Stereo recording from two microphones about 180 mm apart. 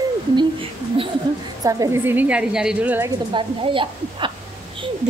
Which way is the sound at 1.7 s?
15° right (ahead or behind).